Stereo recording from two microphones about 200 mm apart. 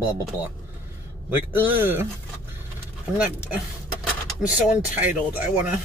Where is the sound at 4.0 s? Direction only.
5° right (ahead or behind).